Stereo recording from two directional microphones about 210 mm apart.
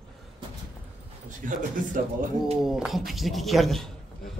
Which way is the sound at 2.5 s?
Centre (ahead or behind).